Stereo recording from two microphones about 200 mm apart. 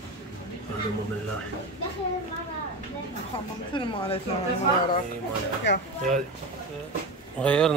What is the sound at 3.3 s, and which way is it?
Speech, 25° left (ahead or behind).